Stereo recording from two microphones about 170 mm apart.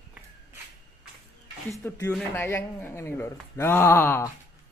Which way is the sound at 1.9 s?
15° left (ahead or behind).